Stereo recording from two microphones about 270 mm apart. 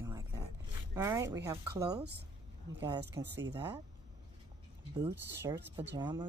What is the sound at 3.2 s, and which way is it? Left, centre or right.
Speech, centre.